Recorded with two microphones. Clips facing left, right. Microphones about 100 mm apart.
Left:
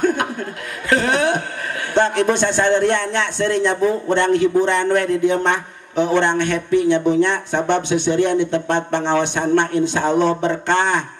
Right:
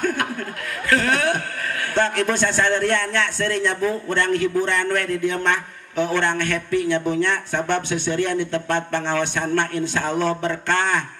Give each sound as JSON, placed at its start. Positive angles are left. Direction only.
{"t": 0.0, "sound": "chuckle", "side_deg": 20}
{"t": 2.0, "sound": "a man's voice", "side_deg": 20}